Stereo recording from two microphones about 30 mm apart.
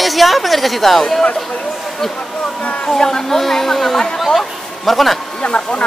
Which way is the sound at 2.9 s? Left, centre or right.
Centre.